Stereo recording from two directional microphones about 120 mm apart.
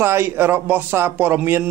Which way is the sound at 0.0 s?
20° right (ahead or behind).